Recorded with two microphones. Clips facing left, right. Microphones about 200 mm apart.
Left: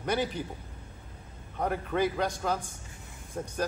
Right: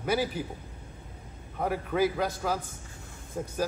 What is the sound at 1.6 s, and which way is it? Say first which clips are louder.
A man's voice: right 1 dB; 5° right (ahead or behind).